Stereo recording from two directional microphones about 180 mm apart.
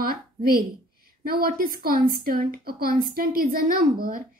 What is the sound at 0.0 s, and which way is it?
A woman's voice, 55° right (ahead or behind).